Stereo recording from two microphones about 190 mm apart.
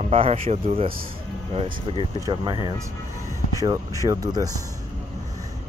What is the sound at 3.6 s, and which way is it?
Speech, 20° right (ahead or behind).